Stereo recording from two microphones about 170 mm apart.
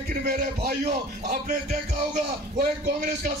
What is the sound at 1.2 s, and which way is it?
Speech, 50° right (ahead or behind).